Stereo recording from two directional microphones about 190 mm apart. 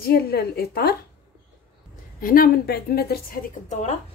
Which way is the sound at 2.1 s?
50° left (ahead or behind).